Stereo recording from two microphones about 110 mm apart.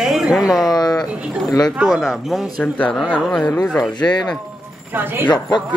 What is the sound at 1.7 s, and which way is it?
Speech, 5° right (ahead or behind).